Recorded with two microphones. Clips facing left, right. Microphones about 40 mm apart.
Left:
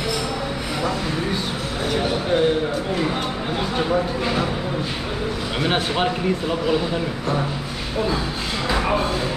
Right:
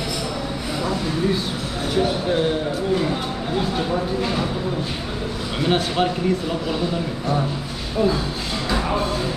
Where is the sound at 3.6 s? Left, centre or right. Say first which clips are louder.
Left 2 dB; centre.